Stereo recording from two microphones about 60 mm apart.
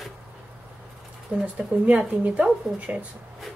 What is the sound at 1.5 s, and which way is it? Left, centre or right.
Speech, right.